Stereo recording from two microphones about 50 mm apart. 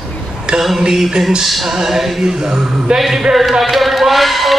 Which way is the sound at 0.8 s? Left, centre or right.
Centre.